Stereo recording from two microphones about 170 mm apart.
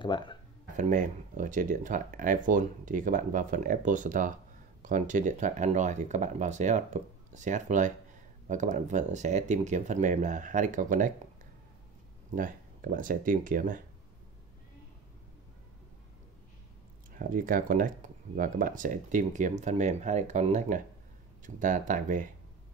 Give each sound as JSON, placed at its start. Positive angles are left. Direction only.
{"t": 0.0, "sound": "speech", "side_deg": 25}
{"t": 0.7, "sound": "speech", "side_deg": -45}
{"t": 12.4, "sound": "speech", "side_deg": -50}
{"t": 17.1, "sound": "speech", "side_deg": -55}